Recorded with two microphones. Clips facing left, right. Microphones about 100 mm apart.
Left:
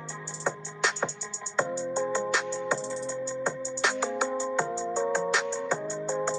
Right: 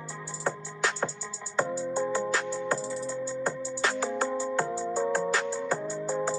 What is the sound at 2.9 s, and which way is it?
Music, 25° left (ahead or behind).